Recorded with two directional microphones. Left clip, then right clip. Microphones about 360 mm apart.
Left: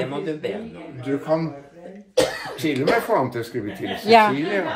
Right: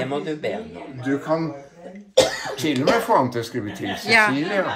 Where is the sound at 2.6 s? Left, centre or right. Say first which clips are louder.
Even; right.